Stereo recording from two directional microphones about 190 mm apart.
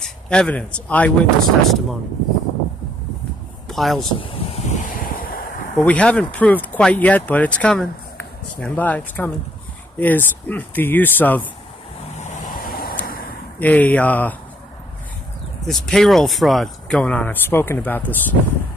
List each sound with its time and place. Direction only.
0.0 s speech: 5° left (ahead or behind)
3.6 s speech: centre (ahead or behind)
4.2 s waves: 35° left (ahead or behind)
5.8 s speech: 5° left (ahead or behind)
12.2 s vehicle: 50° left (ahead or behind)
13.0 s a sound: 50° left (ahead or behind)
13.6 s speech: 10° left (ahead or behind)
15.6 s speech: centre (ahead or behind)